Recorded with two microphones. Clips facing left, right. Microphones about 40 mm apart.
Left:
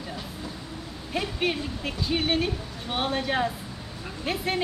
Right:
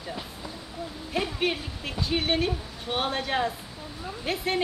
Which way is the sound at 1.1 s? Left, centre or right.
Centre.